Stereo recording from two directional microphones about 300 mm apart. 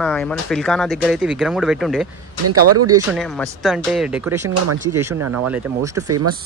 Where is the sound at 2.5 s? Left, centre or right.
Right.